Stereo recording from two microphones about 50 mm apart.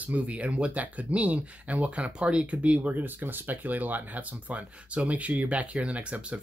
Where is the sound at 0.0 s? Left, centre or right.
Right.